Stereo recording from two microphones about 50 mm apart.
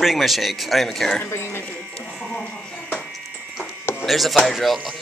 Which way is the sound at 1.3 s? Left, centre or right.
Left.